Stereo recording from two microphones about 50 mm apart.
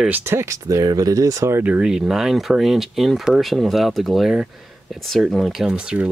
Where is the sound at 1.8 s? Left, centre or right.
Centre.